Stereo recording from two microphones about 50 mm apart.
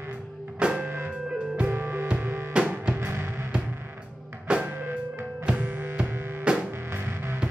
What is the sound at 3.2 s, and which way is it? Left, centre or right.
Music, right.